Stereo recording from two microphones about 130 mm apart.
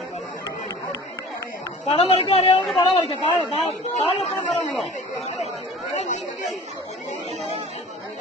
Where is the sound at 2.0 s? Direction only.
55° left (ahead or behind).